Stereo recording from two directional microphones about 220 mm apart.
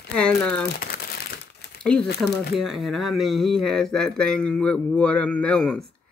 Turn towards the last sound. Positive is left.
turn(degrees=5)  # may be behind; listen again after turning